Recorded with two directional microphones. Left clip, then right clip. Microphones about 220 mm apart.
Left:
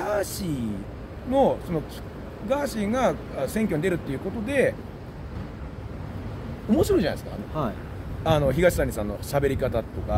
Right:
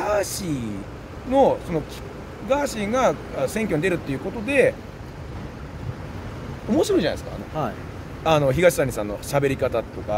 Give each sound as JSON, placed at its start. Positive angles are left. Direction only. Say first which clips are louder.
{"t": 0.0, "sound": "a man's voice", "louder": "right 4 dB", "side_deg": -15}
{"t": 6.7, "sound": "speech", "louder": "right 2 dB", "side_deg": -10}
{"t": 7.6, "sound": "speech", "louder": "right 2 dB", "side_deg": 10}
{"t": 8.2, "sound": "speech", "louder": "right 3 dB", "side_deg": -15}